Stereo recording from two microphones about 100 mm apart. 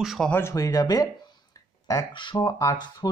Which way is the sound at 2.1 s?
50° left (ahead or behind).